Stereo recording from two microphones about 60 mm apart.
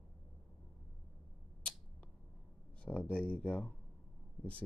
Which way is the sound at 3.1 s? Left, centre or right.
Centre.